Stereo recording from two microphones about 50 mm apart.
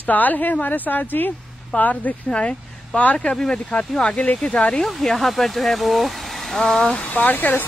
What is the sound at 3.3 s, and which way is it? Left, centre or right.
Speech, centre.